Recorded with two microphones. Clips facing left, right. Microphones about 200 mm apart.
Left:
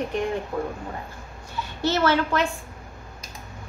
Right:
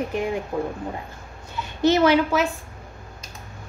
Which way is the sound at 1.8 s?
15° right (ahead or behind).